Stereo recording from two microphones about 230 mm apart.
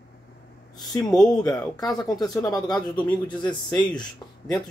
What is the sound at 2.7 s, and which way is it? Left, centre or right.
Speech, centre.